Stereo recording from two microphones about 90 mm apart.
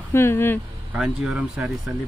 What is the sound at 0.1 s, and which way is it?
Speech, 25° left (ahead or behind).